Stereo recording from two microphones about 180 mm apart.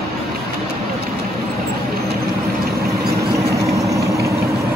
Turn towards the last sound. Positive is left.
turn(degrees=-15)  # may be behind; listen again after turning